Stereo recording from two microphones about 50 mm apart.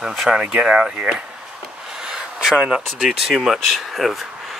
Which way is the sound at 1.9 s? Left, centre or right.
Centre.